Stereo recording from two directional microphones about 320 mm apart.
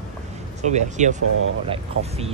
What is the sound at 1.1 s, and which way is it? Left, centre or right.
Speech, right.